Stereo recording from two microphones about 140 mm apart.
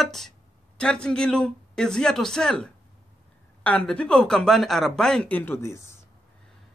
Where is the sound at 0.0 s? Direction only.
Centre (ahead or behind); by 5.9 s 20° left (ahead or behind).